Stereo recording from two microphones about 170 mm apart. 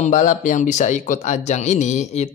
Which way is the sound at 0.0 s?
45° left (ahead or behind).